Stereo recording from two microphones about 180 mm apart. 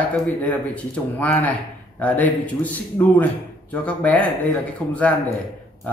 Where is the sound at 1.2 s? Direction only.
10° left (ahead or behind).